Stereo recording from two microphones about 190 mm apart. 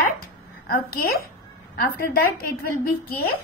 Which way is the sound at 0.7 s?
50° left (ahead or behind).